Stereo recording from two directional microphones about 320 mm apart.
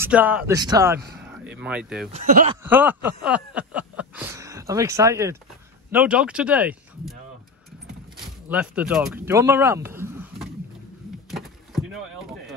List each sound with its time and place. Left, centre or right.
0.0 s speech: centre
1.1 s a sound: centre
2.1 s speech: right
2.6 s speech: centre
8.5 s speech: centre
11.2 s a sound: centre